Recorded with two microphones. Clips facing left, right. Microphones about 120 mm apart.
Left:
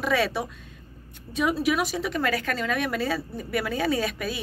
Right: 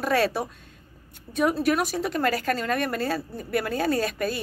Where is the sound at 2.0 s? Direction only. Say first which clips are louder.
Right 2 dB; 45° right (ahead or behind).